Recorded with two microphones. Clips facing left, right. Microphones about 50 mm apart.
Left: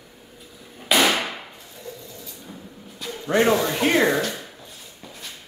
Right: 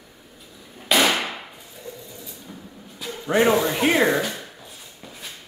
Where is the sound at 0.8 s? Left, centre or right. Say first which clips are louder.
Even; centre.